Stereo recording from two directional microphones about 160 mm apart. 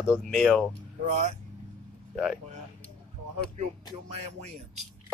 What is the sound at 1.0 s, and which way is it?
Speech, 50° right (ahead or behind).